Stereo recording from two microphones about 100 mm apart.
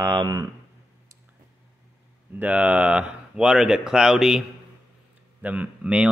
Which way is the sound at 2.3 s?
15° right (ahead or behind).